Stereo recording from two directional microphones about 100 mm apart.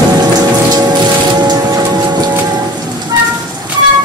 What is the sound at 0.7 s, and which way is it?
Music, 45° right (ahead or behind).